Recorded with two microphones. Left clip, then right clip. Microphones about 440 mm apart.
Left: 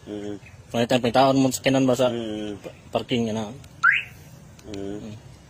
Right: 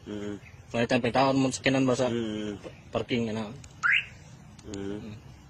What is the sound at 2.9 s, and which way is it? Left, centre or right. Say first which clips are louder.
Speech: left 5 dB; right.